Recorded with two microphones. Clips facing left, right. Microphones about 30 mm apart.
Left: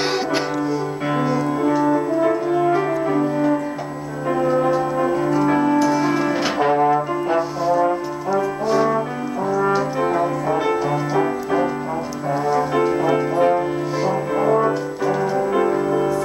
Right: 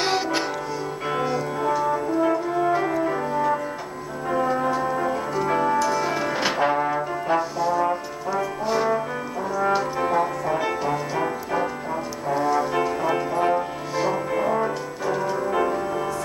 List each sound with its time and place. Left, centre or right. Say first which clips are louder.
0.0 s music: left 2 dB; centre
1.1 s french horn: left 5 dB; centre
4.3 s music: left 4 dB; centre
9.5 s brass instrument: left 3 dB; centre
12.3 s music: left 2 dB; centre